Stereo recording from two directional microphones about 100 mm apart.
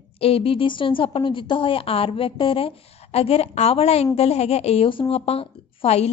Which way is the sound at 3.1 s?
90° left.